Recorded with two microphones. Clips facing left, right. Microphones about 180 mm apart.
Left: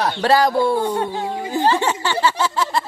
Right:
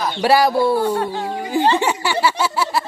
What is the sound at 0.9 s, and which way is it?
Speech, 15° left (ahead or behind).